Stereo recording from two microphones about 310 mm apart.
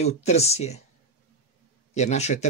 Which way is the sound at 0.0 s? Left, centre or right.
Left.